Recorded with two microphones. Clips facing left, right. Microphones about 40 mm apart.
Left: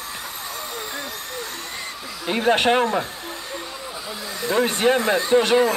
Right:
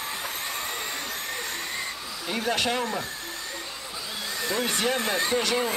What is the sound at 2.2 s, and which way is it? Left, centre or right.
Speech, left.